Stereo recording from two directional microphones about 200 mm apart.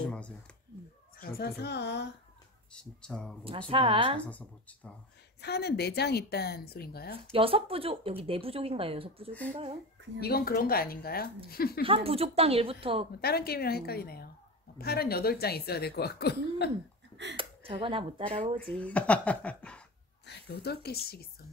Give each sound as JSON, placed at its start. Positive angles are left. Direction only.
{"t": 0.0, "sound": "a sound", "side_deg": 5}
{"t": 1.1, "sound": "speech", "side_deg": 45}
{"t": 2.7, "sound": "speech", "side_deg": 5}
{"t": 3.4, "sound": "speech", "side_deg": -25}
{"t": 4.3, "sound": "speech", "side_deg": 5}
{"t": 5.4, "sound": "speech", "side_deg": 55}
{"t": 7.3, "sound": "speech", "side_deg": -25}
{"t": 10.2, "sound": "speech", "side_deg": 50}
{"t": 11.8, "sound": "speech", "side_deg": -30}
{"t": 13.2, "sound": "speech", "side_deg": 50}
{"t": 17.4, "sound": "speech", "side_deg": -25}
{"t": 18.6, "sound": "speech", "side_deg": 5}
{"t": 20.2, "sound": "speech", "side_deg": 55}